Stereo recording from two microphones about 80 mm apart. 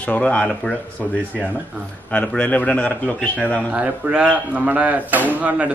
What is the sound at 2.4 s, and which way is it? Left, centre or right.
A man's voice, centre.